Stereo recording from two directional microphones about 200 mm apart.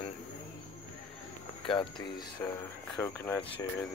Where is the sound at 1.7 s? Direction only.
20° left (ahead or behind).